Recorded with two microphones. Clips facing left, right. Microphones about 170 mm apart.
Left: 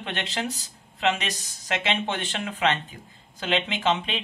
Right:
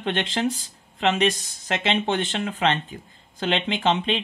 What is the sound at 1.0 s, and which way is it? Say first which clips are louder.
Speech: right 5 dB; 35° right (ahead or behind).